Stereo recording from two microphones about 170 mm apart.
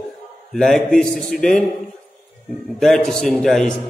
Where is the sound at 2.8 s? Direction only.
5° left (ahead or behind).